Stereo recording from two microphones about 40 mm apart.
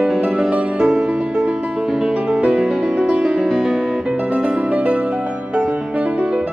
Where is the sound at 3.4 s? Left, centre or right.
Centre.